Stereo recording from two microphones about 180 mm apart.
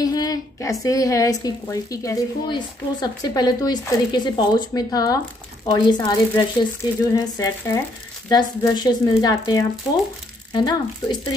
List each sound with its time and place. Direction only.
0.0 s a woman's voice: 20° left (ahead or behind)